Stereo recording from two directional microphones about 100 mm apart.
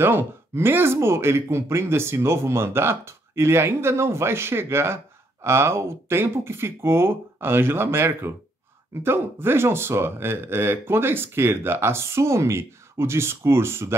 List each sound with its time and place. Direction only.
0.0 s speech: 20° right (ahead or behind)